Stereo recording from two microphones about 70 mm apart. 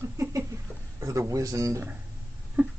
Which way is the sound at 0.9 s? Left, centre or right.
Right.